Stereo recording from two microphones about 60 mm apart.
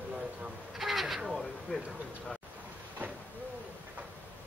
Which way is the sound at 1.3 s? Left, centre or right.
Centre.